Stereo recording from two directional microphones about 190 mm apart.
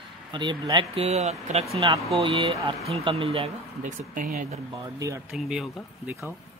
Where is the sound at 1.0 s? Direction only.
35° right (ahead or behind).